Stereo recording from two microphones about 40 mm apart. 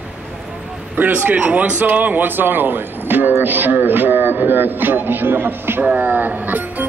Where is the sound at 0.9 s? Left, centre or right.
Right.